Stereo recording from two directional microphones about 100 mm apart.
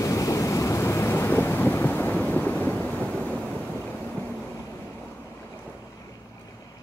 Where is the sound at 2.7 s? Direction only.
15° left (ahead or behind).